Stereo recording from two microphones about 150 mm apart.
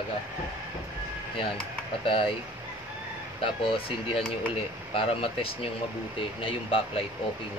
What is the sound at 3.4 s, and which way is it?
Speech, 40° left (ahead or behind).